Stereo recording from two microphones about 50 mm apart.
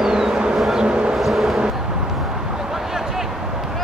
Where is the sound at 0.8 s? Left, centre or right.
Centre.